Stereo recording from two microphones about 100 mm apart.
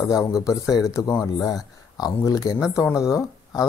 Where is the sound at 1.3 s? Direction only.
45° left (ahead or behind).